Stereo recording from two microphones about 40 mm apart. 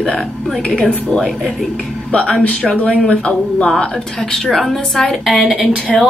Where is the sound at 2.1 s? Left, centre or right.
Left.